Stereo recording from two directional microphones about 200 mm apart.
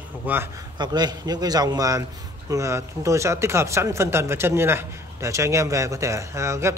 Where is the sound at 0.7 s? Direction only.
20° right (ahead or behind).